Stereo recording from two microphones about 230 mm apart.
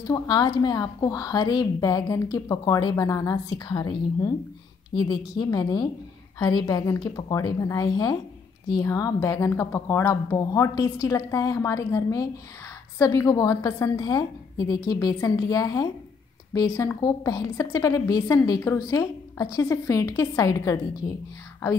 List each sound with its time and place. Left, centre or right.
0.0 s a woman's voice: centre